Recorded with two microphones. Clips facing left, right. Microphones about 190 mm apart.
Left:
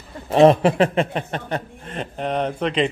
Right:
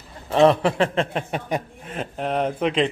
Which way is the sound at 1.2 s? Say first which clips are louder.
Even; 10° right (ahead or behind).